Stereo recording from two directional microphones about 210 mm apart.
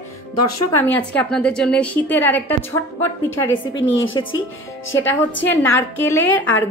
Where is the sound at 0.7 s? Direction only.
10° left (ahead or behind).